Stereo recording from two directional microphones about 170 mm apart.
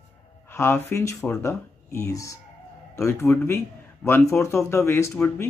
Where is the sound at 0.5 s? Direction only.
15° left (ahead or behind).